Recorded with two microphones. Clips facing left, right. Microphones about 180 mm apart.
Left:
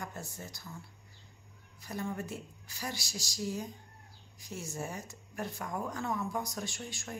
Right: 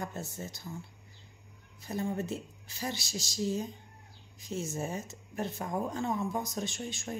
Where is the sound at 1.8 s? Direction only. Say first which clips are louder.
Right 4 dB; 25° right (ahead or behind).